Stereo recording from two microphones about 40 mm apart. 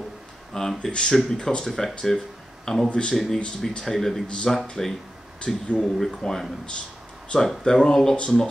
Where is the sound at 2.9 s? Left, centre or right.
Left.